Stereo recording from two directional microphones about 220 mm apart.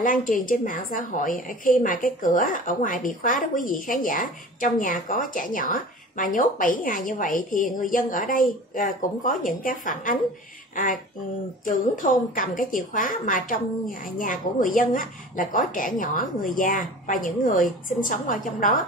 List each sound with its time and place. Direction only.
0.0 s a woman's voice: 35° left (ahead or behind)
11.6 s a woman's voice: 35° left (ahead or behind)